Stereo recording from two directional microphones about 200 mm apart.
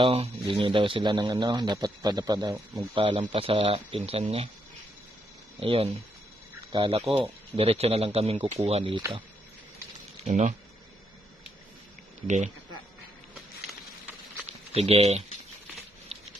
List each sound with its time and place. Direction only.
0.0 s speech: 25° right (ahead or behind)
5.6 s speech: 30° right (ahead or behind)
10.2 s speech: 35° right (ahead or behind)
12.3 s speech: 35° right (ahead or behind)
14.7 s speech: 30° right (ahead or behind)